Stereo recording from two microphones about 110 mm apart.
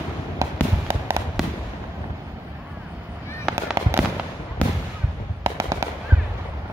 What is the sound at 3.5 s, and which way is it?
Fireworks, 5° left (ahead or behind).